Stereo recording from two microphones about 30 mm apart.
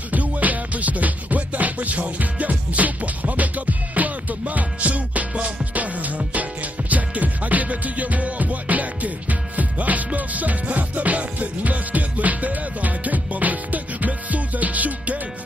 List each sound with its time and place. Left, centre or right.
0.1 s music: right